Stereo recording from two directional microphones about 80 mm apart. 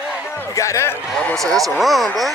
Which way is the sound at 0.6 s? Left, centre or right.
Left.